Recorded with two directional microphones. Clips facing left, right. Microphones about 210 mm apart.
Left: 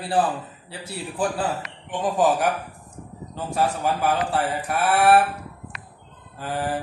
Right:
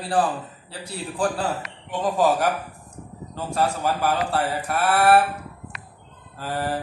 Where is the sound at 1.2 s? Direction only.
5° left (ahead or behind).